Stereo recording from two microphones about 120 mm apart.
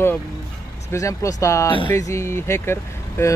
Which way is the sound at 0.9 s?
25° left (ahead or behind).